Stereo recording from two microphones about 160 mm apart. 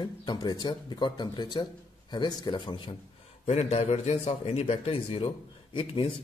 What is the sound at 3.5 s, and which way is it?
A man's voice, 40° left (ahead or behind).